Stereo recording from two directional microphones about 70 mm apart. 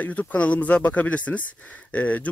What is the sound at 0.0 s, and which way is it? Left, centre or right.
Speech, centre.